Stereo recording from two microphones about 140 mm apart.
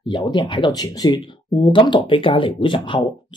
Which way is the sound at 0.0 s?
35° left (ahead or behind).